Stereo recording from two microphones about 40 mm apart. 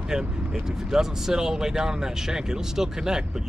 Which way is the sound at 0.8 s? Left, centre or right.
Centre.